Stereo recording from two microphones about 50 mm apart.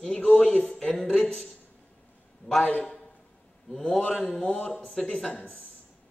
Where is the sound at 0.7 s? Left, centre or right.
Centre.